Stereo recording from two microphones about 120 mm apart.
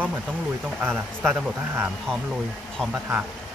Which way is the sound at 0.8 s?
20° right (ahead or behind).